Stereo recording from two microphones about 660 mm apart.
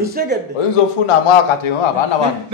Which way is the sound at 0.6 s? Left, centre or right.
Left.